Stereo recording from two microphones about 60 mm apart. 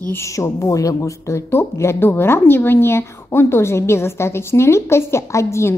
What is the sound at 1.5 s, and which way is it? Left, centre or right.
A woman's voice, left.